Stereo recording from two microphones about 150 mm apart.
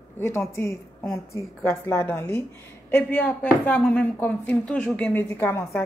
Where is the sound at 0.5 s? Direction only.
20° left (ahead or behind).